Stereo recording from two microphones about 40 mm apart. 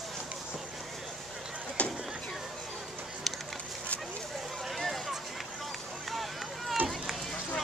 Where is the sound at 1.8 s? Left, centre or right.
Left.